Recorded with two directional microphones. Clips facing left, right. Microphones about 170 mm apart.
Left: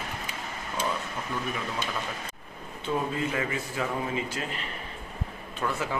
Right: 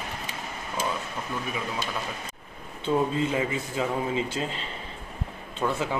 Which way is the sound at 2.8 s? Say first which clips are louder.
Right 4 dB; 25° right (ahead or behind).